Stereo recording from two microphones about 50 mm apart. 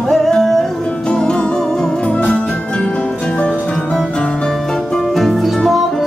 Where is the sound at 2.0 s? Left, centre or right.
Left.